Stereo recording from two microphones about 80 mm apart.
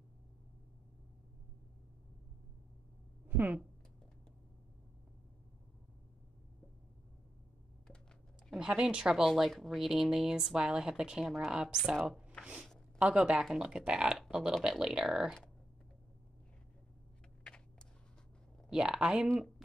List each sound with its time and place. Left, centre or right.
3.3 s speech: right
8.5 s speech: centre
13.0 s speech: centre
14.1 s speech: centre
18.7 s speech: centre